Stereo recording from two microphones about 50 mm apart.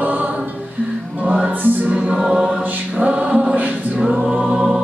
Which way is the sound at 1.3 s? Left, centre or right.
Right.